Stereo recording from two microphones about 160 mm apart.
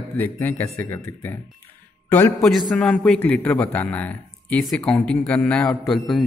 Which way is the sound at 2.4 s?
Centre (ahead or behind).